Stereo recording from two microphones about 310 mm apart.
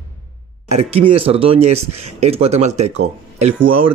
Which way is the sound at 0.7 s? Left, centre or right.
Centre.